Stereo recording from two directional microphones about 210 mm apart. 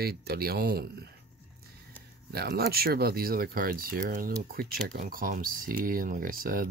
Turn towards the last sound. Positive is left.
turn(degrees=-45)  # may be behind; listen again after turning